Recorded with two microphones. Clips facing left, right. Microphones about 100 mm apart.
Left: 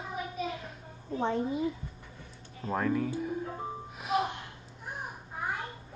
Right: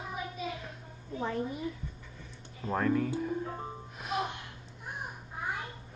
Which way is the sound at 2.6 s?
Centre (ahead or behind).